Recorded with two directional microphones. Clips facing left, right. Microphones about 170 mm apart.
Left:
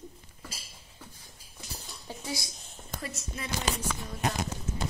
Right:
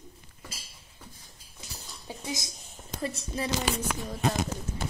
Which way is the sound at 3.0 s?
30° right (ahead or behind).